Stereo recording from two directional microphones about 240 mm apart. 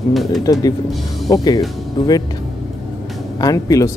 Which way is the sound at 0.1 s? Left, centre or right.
Centre.